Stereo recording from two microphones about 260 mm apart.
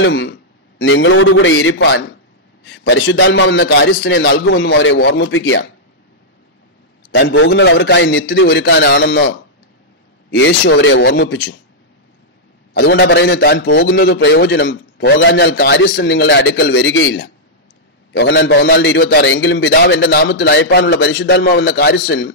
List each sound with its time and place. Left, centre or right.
0.0 s a man's voice: left
7.2 s a man's voice: left
10.3 s a man's voice: left
12.7 s a man's voice: left